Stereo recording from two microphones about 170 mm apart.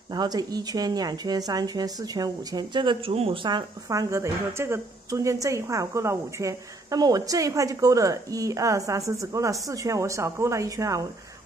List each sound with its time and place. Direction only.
0.1 s speech: 25° right (ahead or behind)